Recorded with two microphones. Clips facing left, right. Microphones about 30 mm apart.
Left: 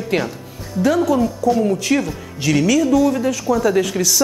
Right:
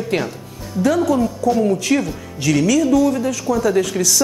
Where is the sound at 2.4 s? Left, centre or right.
Centre.